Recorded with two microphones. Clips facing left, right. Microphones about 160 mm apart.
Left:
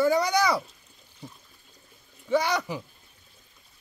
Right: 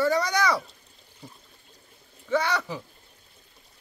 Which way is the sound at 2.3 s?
10° left (ahead or behind).